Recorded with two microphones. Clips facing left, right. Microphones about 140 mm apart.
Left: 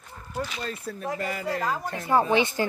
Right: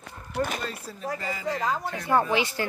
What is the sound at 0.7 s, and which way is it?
Speech, 55° left (ahead or behind).